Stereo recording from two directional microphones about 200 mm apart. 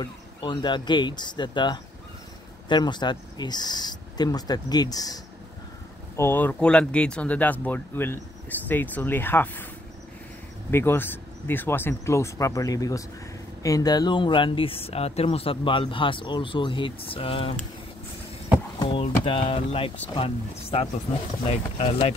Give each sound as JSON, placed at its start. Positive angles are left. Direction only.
{"t": 0.0, "sound": "speech", "side_deg": 25}
{"t": 10.7, "sound": "speech", "side_deg": 10}
{"t": 18.8, "sound": "speech", "side_deg": 25}